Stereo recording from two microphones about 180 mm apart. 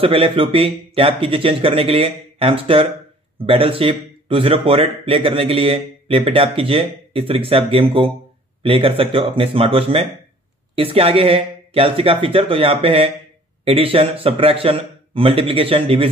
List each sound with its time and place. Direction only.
0.0 s a man's voice: 30° right (ahead or behind)